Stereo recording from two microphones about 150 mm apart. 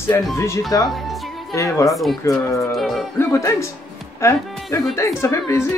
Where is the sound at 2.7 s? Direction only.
Centre (ahead or behind).